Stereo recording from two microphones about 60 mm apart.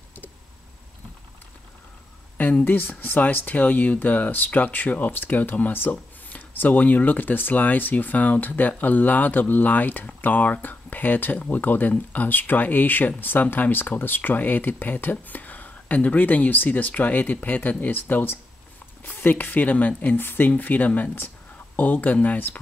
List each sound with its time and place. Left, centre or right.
2.6 s speech: left